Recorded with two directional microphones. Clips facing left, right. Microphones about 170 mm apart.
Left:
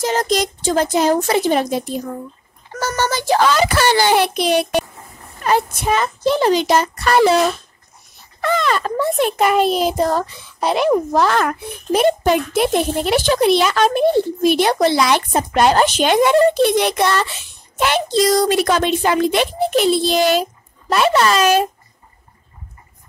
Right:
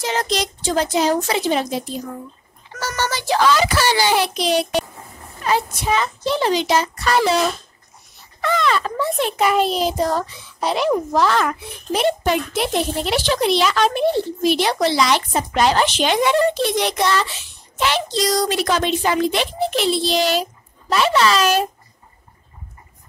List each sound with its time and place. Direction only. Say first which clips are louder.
0.0 s a child's voice: left 4 dB; 45° left (ahead or behind)
8.4 s a child's voice: left 1 dB; 45° left (ahead or behind)